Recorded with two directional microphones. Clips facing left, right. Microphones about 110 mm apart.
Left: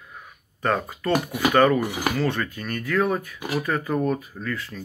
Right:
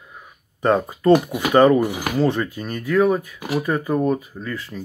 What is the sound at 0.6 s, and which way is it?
Speech, 20° right (ahead or behind).